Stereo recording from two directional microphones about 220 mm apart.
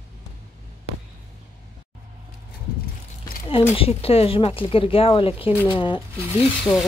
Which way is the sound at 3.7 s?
25° left (ahead or behind).